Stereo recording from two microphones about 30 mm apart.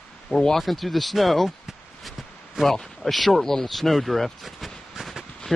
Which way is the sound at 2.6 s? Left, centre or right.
Centre.